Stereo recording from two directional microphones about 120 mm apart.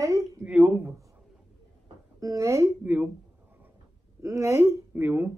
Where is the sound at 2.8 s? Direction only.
15° right (ahead or behind).